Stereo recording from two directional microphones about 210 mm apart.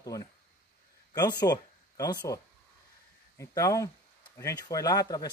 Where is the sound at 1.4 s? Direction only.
20° left (ahead or behind).